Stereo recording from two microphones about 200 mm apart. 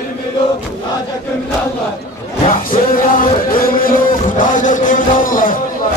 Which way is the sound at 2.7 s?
45° left (ahead or behind).